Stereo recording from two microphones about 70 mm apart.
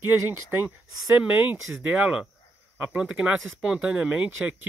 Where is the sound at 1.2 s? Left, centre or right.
Right.